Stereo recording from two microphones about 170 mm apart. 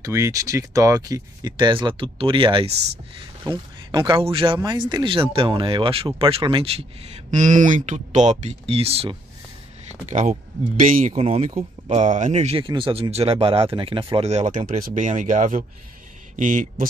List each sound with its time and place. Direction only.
0.0 s speech: 15° right (ahead or behind); by 6.8 s 35° right (ahead or behind)
7.2 s speech: 45° right (ahead or behind)
10.0 s speech: 50° right (ahead or behind)